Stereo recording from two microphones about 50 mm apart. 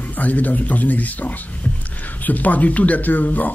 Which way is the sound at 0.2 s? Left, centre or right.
Left.